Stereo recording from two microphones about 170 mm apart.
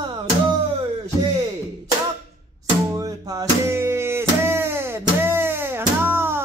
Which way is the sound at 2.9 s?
20° right (ahead or behind).